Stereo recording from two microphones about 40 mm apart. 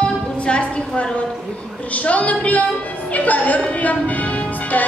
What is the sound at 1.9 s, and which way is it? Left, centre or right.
Speech, left.